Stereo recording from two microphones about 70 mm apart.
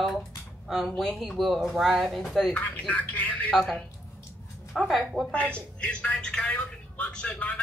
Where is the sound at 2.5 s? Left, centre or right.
Left.